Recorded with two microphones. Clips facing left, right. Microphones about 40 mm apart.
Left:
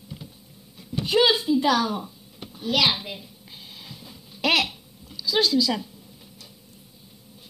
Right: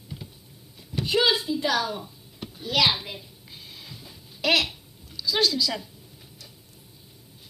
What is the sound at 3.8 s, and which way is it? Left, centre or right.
Dog, left.